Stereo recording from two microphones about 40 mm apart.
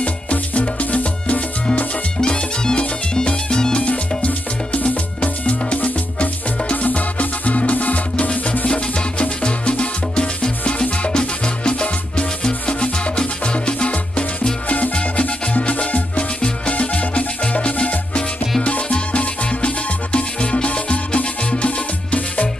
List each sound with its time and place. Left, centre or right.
0.0 s music: left
2.1 s music: left
4.2 s music: left
15.5 s music: left
15.8 s music: left